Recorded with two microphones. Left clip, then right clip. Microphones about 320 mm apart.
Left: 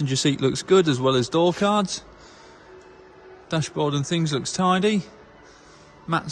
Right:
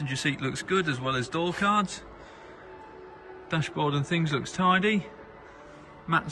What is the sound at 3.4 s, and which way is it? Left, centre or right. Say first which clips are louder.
Speech: left 4 dB; centre.